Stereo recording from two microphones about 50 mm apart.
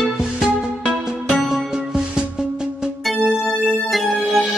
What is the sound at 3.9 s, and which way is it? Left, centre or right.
Music, centre.